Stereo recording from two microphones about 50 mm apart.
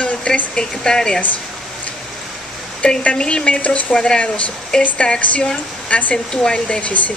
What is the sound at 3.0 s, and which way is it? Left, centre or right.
Speech, left.